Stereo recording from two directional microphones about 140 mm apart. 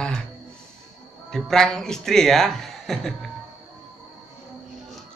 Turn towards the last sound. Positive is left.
turn(degrees=5)  # may be behind; listen again after turning